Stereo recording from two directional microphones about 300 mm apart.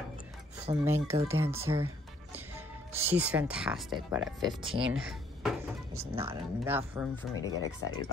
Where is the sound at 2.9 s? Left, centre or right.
Centre.